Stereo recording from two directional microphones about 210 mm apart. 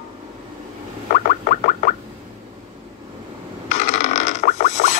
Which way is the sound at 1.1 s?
35° left (ahead or behind).